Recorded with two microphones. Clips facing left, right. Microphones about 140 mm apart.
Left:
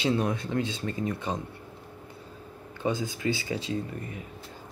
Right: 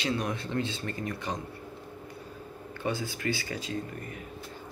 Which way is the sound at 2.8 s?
20° left (ahead or behind).